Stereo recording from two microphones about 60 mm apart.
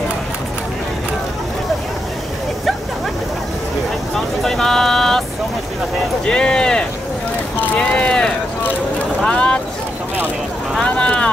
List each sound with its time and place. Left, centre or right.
4.1 s vehicle: centre
6.2 s a sound: centre
9.2 s vehicle: centre
10.8 s vehicle: centre